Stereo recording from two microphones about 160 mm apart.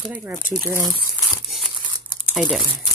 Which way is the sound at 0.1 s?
15° right (ahead or behind).